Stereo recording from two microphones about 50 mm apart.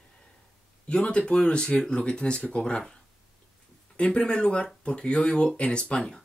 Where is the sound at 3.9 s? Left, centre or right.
Left.